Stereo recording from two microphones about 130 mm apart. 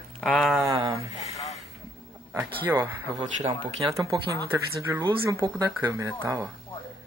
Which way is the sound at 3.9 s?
25° right (ahead or behind).